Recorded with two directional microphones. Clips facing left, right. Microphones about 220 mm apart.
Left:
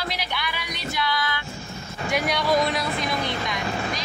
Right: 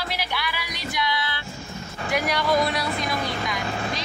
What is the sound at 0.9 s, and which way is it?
Music, 15° right (ahead or behind).